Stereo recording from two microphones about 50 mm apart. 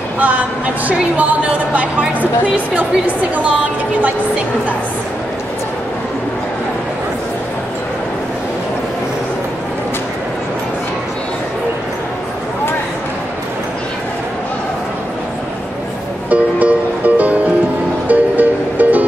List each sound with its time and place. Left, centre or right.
0.2 s a woman's voice: right
16.3 s music: right